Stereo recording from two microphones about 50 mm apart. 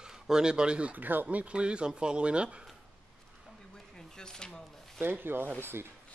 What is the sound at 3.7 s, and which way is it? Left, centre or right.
Drawer open or close, centre.